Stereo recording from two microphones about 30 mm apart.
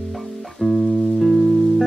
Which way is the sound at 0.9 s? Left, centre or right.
Left.